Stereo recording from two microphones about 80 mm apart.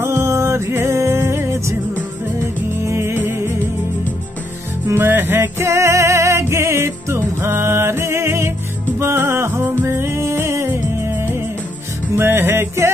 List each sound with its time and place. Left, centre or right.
0.0 s music: right
4.8 s music: right
12.2 s music: right